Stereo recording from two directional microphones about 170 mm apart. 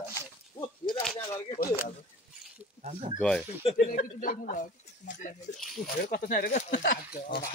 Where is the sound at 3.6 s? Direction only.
40° left (ahead or behind).